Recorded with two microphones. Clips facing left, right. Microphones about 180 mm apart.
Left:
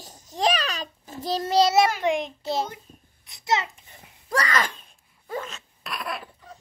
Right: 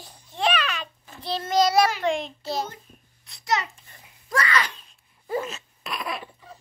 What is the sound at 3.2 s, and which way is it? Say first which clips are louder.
Babbling: left 1 dB; 20° left (ahead or behind).